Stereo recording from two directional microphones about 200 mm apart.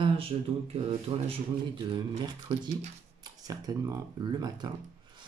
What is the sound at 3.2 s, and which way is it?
Speech, 20° right (ahead or behind).